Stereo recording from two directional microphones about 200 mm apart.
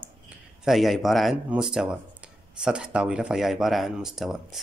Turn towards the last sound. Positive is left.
turn(degrees=0)  # may be behind; listen again after turning